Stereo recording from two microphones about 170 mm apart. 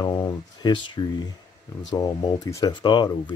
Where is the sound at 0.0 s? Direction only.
20° left (ahead or behind).